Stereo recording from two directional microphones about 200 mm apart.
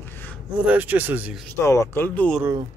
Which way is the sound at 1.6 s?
15° left (ahead or behind).